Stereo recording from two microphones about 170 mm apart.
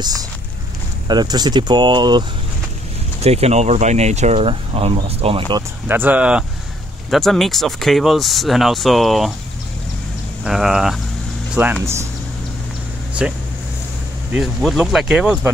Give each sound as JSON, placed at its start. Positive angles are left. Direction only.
{"t": 0.0, "sound": "speech", "side_deg": -20}
{"t": 3.2, "sound": "speech", "side_deg": -40}
{"t": 5.9, "sound": "speech", "side_deg": -10}
{"t": 10.4, "sound": "speech", "side_deg": 0}
{"t": 14.3, "sound": "speech", "side_deg": 0}